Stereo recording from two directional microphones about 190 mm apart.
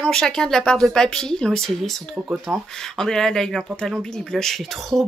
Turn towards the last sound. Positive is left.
turn(degrees=0)  # may be behind; listen again after turning